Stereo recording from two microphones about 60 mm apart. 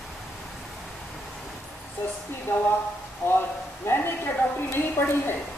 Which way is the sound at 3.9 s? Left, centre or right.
Left.